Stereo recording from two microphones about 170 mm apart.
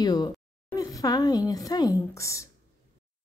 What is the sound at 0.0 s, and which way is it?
Speech, 25° left (ahead or behind).